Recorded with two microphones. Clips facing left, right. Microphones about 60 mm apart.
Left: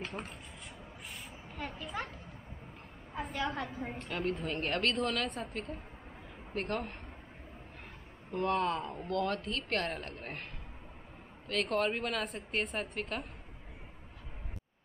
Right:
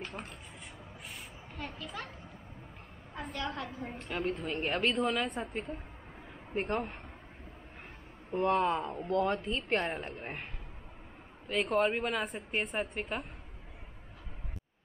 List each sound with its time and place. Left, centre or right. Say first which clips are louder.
0.0 s a woman's voice: left 1 dB; centre
1.5 s a child's voice: left 2 dB; centre
3.2 s a woman's voice: left 2 dB; centre
6.5 s a woman's voice: right 3 dB; centre
8.3 s a woman's voice: right 3 dB; right
11.4 s a woman's voice: right 3 dB; centre